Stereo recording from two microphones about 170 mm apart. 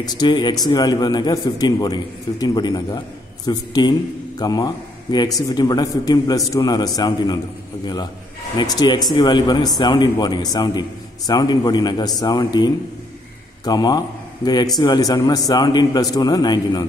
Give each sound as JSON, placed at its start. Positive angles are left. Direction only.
{"t": 0.0, "sound": "a man's voice", "side_deg": 25}